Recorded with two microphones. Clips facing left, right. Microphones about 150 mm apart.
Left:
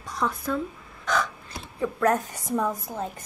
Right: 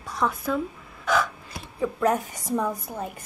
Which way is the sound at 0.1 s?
Centre (ahead or behind).